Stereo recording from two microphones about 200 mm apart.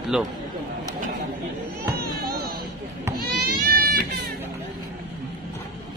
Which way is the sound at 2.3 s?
50° right (ahead or behind).